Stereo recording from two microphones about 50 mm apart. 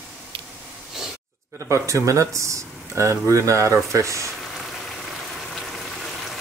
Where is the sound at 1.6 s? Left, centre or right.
Right.